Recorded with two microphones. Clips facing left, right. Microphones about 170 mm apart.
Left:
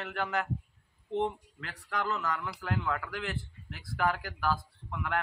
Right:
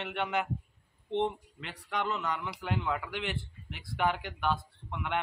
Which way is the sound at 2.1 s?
25° right (ahead or behind).